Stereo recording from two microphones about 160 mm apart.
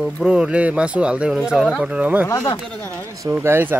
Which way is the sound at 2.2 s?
20° left (ahead or behind).